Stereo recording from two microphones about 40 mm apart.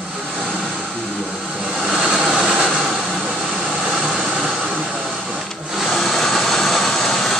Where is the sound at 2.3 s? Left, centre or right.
Centre.